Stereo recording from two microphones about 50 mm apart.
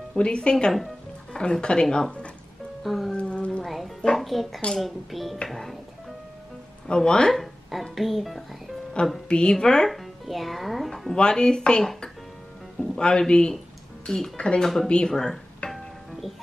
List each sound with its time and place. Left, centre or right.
0.2 s speech: centre
2.8 s music: centre
3.1 s a sound: left
3.6 s music: centre
4.2 s a child's voice: centre
6.9 s speech: centre
7.9 s a child's voice: centre
9.0 s speech: centre
9.8 s music: centre
11.1 s speech: centre
14.6 s a child's voice: centre
15.7 s music: centre